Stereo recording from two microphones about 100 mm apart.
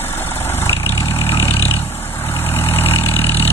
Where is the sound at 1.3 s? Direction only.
30° left (ahead or behind).